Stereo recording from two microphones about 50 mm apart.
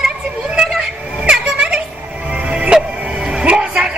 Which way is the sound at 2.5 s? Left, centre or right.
Right.